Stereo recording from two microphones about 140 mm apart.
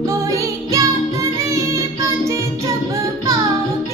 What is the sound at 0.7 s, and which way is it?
Music, 25° right (ahead or behind).